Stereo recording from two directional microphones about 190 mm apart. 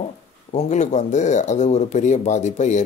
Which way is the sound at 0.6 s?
40° left (ahead or behind).